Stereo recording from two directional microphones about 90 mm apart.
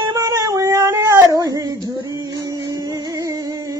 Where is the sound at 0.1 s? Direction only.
35° right (ahead or behind).